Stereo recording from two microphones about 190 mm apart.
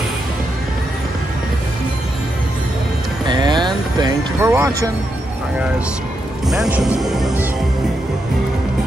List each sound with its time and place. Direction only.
3.3 s vehicle: 25° right (ahead or behind)
4.4 s speech: 15° right (ahead or behind)
6.5 s speech: centre (ahead or behind)